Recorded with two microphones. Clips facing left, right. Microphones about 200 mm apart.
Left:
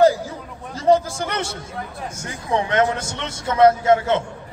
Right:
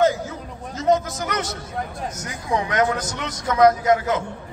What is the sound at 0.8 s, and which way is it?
A man's voice, 30° left (ahead or behind).